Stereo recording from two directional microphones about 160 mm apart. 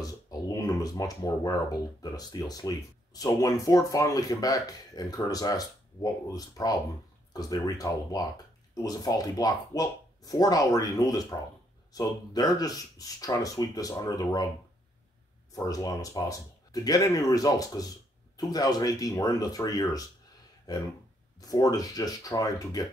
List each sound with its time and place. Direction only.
0.0 s speech: 20° left (ahead or behind)
15.5 s speech: 20° left (ahead or behind)